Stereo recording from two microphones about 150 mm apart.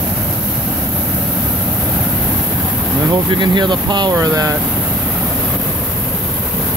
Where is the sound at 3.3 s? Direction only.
30° right (ahead or behind).